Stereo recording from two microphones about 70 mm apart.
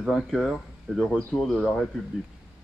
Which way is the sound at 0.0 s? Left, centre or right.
Centre.